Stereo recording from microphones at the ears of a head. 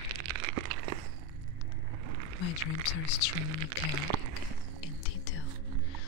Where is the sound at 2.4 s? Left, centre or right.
Left.